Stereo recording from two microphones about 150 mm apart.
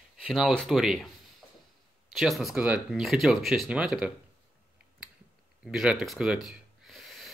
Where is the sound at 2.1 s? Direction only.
Centre (ahead or behind).